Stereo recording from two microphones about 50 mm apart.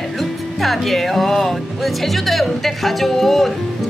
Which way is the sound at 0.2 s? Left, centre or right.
Centre.